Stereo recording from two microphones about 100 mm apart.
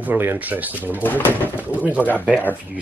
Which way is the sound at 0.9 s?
20° left (ahead or behind).